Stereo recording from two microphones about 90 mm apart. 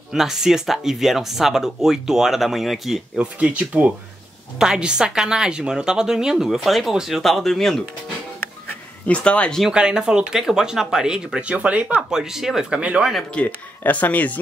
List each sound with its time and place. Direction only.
0.1 s speech: 5° right (ahead or behind)
3.2 s speech: 15° right (ahead or behind); by 7.8 s 5° left (ahead or behind)
9.0 s speech: 15° left (ahead or behind)
9.6 s speech: 10° right (ahead or behind)
13.1 s speech: 10° left (ahead or behind)